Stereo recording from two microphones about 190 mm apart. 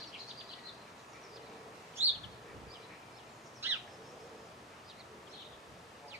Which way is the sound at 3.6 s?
10° right (ahead or behind).